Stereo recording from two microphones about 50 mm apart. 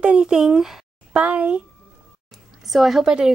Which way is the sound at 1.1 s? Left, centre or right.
Right.